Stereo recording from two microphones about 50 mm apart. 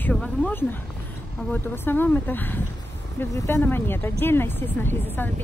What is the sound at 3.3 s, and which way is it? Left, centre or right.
Speech, left.